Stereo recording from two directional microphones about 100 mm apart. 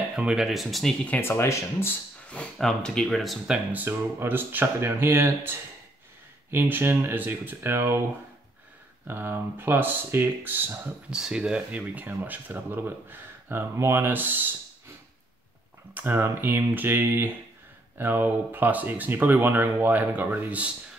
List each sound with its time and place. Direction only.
0.1 s speech: 10° right (ahead or behind)
1.0 s speech: 20° left (ahead or behind)
2.2 s speech: 10° left (ahead or behind)
3.4 s speech: 15° right (ahead or behind)
9.0 s speech: 20° right (ahead or behind)
11.1 s speech: 5° right (ahead or behind)
15.9 s speech: 20° right (ahead or behind)